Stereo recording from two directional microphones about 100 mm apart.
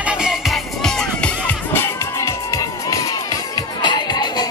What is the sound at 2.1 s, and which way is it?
Music, 35° left (ahead or behind).